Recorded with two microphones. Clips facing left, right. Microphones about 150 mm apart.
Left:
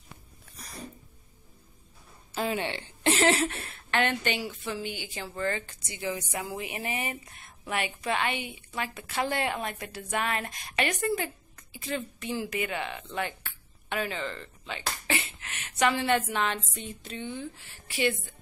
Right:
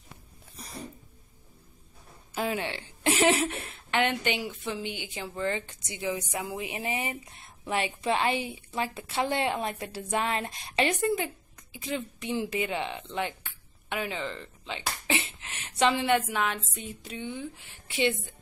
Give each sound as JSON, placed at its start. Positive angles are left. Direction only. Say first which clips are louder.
{"t": 2.3, "sound": "a woman's voice", "louder": "even", "side_deg": -5}